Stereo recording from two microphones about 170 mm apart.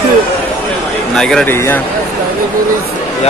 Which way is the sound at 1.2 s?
5° left (ahead or behind).